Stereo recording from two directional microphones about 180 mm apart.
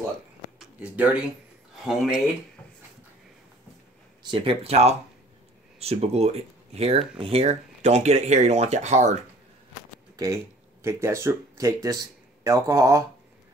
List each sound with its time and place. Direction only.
0.6 s a sound: 10° right (ahead or behind)
1.9 s speech: centre (ahead or behind)
4.2 s speech: 30° right (ahead or behind)
10.1 s speech: 15° right (ahead or behind)